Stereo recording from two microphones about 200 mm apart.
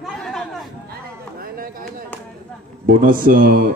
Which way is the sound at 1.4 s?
45° right (ahead or behind).